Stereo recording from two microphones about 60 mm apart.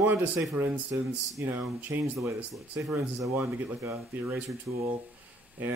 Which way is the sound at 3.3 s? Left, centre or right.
Right.